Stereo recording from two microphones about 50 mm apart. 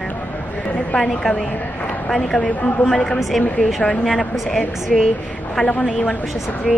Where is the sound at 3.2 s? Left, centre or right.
Centre.